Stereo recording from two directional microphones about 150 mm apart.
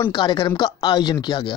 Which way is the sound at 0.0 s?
30° left (ahead or behind).